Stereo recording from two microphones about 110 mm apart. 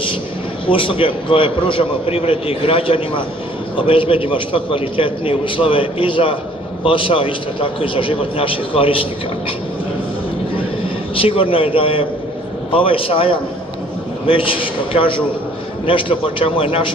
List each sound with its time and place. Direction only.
0.7 s a man's voice: 50° left (ahead or behind)
11.1 s a man's voice: 55° left (ahead or behind)